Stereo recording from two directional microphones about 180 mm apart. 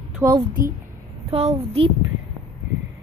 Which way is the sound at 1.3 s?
35° right (ahead or behind).